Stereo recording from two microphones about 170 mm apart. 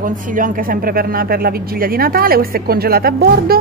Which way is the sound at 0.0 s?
50° right (ahead or behind).